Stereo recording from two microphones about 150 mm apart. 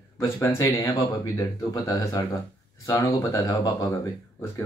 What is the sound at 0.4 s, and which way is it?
Speech, 20° left (ahead or behind).